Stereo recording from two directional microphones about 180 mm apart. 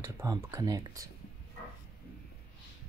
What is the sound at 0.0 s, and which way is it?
Speech, 15° right (ahead or behind).